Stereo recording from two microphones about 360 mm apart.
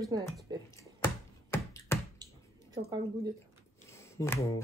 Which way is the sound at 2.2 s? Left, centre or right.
Centre.